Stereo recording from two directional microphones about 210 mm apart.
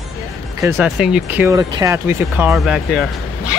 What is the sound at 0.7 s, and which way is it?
Speech, centre (ahead or behind).